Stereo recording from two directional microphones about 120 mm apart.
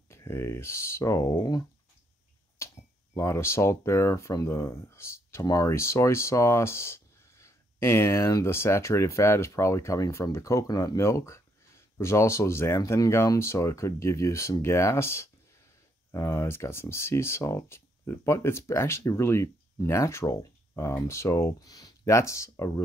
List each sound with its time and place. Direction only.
0.1 s speech: 20° left (ahead or behind)
2.6 s finger snapping: 25° left (ahead or behind)
3.2 s speech: 20° left (ahead or behind)